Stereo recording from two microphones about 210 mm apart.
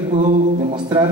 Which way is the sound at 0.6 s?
25° right (ahead or behind).